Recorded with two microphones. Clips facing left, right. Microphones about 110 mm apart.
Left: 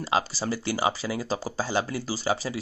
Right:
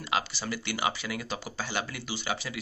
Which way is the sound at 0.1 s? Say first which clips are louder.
Left 4 dB; 35° left (ahead or behind).